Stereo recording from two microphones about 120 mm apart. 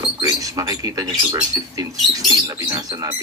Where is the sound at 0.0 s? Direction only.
30° right (ahead or behind).